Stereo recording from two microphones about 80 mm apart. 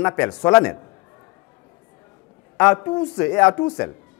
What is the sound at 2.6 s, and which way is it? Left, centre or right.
Speech, left.